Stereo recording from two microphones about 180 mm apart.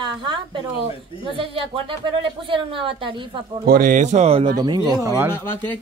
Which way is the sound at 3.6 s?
50° right (ahead or behind).